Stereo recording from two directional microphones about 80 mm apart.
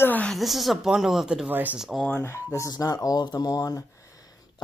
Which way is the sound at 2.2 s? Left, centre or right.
Left.